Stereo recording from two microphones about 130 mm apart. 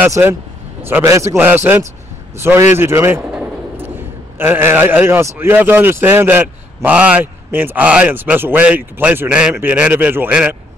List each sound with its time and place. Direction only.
0.1 s speech: 25° right (ahead or behind)
3.3 s a sound: 10° right (ahead or behind)
4.4 s speech: 15° right (ahead or behind)